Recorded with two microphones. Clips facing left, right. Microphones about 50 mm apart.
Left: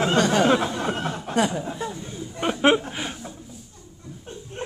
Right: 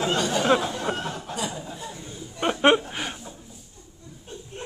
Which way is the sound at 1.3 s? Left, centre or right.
Left.